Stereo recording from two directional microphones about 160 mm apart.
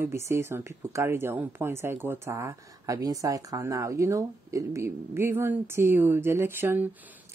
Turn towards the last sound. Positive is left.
turn(degrees=-15)  # may be behind; listen again after turning